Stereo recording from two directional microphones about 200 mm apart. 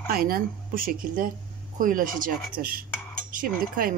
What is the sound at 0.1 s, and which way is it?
Speech, 45° right (ahead or behind).